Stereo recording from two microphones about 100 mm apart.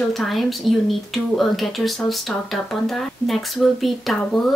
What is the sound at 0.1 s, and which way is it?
Speech, centre (ahead or behind).